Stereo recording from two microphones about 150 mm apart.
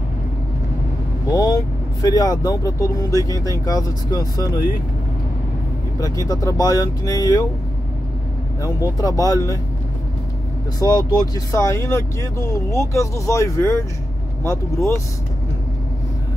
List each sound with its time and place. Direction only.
1.3 s speech: 25° left (ahead or behind)
5.9 s speech: 25° left (ahead or behind)
8.6 s speech: 25° left (ahead or behind)
10.8 s speech: 25° left (ahead or behind)